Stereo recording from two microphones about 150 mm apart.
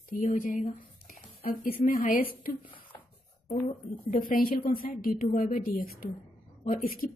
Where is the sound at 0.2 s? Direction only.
65° left (ahead or behind).